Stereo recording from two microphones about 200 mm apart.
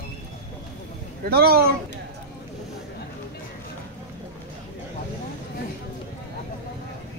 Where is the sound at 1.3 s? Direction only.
50° right (ahead or behind).